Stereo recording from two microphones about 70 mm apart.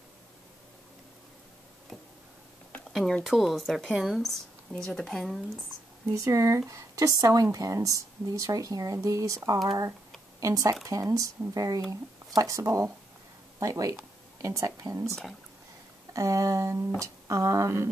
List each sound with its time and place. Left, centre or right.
2.9 s a sound: centre
3.3 s speech: centre
6.1 s speech: right
9.5 s speech: right